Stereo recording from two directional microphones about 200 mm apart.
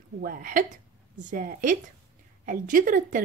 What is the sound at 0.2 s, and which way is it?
A woman's voice, 45° right (ahead or behind).